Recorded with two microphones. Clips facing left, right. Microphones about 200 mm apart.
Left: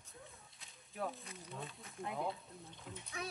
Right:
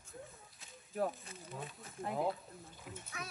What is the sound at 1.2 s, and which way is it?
Speech, centre (ahead or behind).